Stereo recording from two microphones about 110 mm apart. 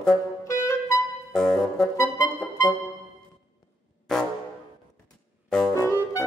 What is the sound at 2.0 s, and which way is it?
Music, 30° left (ahead or behind).